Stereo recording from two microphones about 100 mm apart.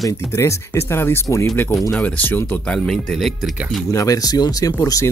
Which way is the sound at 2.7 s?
5° left (ahead or behind).